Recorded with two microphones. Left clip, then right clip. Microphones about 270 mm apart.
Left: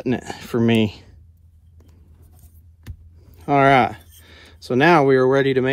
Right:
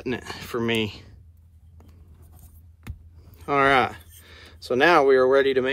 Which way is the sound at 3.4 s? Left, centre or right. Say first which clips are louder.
Left 5 dB; centre.